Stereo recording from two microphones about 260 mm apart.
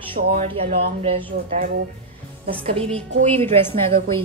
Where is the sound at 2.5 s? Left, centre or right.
Right.